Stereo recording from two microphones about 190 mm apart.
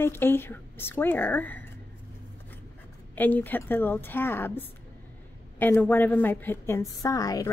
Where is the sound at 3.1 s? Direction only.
10° left (ahead or behind).